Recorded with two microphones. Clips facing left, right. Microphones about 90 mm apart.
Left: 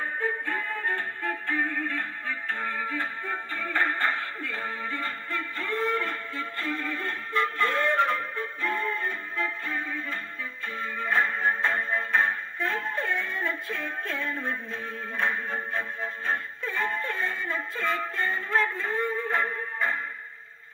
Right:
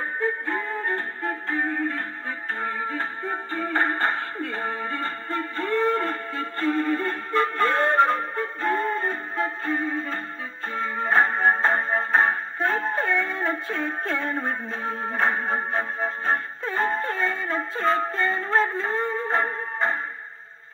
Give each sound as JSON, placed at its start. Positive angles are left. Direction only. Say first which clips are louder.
{"t": 0.2, "sound": "music", "louder": "right 5 dB", "side_deg": -20}
{"t": 3.9, "sound": "a sound", "louder": "right 3 dB", "side_deg": -35}
{"t": 4.6, "sound": "music", "louder": "right 4 dB", "side_deg": -35}
{"t": 5.9, "sound": "music", "louder": "right 4 dB", "side_deg": -45}
{"t": 11.0, "sound": "music", "louder": "right 5 dB", "side_deg": -40}
{"t": 11.8, "sound": "music", "louder": "right 4 dB", "side_deg": -50}
{"t": 17.8, "sound": "music", "louder": "right 7 dB", "side_deg": -40}
{"t": 18.2, "sound": "music", "louder": "right 1 dB", "side_deg": -25}